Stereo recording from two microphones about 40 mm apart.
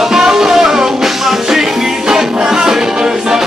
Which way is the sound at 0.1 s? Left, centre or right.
Centre.